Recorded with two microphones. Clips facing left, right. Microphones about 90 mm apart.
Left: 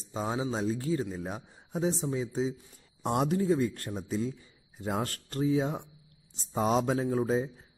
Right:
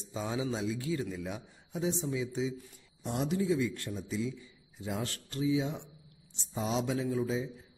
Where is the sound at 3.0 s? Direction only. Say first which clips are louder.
Left 4 dB; 50° left (ahead or behind).